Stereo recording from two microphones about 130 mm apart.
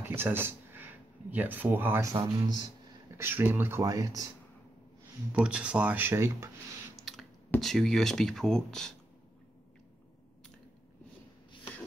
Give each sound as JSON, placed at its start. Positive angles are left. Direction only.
{"t": 0.0, "sound": "speech", "side_deg": -15}
{"t": 3.2, "sound": "speech", "side_deg": -15}
{"t": 3.8, "sound": "speech", "side_deg": -25}
{"t": 5.4, "sound": "speech", "side_deg": -10}
{"t": 7.0, "sound": "a sound", "side_deg": 0}
{"t": 7.6, "sound": "speech", "side_deg": 0}